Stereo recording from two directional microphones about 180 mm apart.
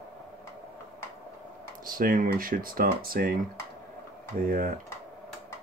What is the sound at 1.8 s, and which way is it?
Speech, 50° right (ahead or behind).